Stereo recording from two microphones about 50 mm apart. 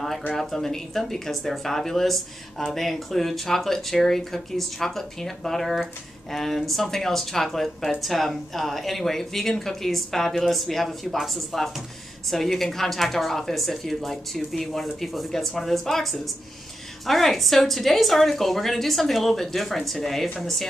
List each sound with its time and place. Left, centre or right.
0.4 s speech: centre